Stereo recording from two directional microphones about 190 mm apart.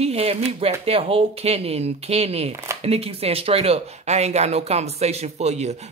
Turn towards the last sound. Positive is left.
turn(degrees=-35)  # may be behind; listen again after turning